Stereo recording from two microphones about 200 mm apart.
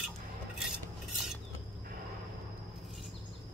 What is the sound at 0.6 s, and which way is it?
Cutlery, centre (ahead or behind).